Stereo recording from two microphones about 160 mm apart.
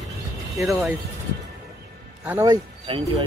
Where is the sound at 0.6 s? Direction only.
Centre (ahead or behind).